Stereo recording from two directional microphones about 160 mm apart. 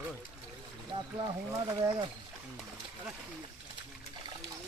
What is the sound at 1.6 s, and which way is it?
Speech, 20° right (ahead or behind).